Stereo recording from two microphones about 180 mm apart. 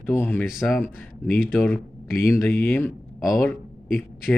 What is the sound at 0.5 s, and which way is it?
Speech, centre (ahead or behind).